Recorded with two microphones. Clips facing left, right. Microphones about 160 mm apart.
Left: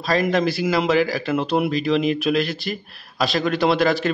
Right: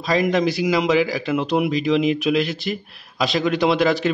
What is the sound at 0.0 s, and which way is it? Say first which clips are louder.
A man's voice: right 1 dB; 20° right (ahead or behind).